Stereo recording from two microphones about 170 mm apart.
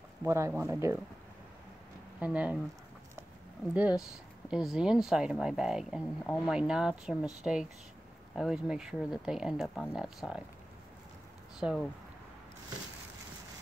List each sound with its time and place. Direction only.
0.2 s speech: 10° right (ahead or behind)
2.1 s speech: 10° right (ahead or behind)
3.7 s speech: 10° right (ahead or behind)